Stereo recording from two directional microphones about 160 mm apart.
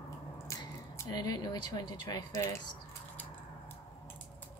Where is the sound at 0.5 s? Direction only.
25° left (ahead or behind).